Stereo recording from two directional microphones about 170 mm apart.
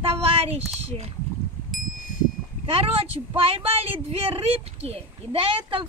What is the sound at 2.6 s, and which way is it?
A woman's voice, 35° right (ahead or behind).